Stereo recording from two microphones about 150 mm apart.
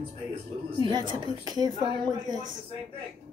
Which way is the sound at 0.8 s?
30° right (ahead or behind).